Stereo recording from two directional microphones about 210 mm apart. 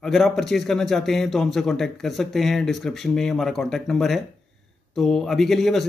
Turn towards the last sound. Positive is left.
turn(degrees=0)  # may be behind; listen again after turning